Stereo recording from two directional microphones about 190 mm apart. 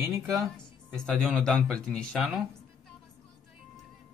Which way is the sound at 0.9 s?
Centre (ahead or behind).